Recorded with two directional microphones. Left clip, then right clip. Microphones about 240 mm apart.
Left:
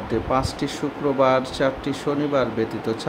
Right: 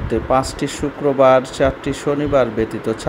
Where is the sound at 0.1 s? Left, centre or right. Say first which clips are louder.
Right 6 dB; centre.